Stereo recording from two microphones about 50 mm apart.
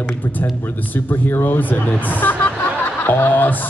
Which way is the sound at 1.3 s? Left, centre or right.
Left.